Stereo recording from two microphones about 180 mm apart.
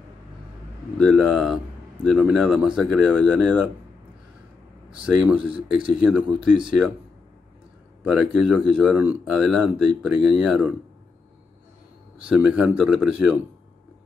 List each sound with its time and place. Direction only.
0.9 s speech: centre (ahead or behind)
4.9 s speech: 5° right (ahead or behind)
5.5 s speech: 30° right (ahead or behind)
5.9 s speech: 5° right (ahead or behind)
8.0 s speech: 5° right (ahead or behind)
12.3 s speech: 5° right (ahead or behind)